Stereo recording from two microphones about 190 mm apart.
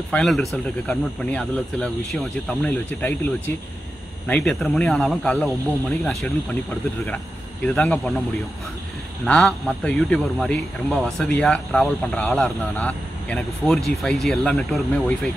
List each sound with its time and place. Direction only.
0.1 s speech: centre (ahead or behind)
7.6 s speech: 5° left (ahead or behind)
9.2 s speech: 5° left (ahead or behind)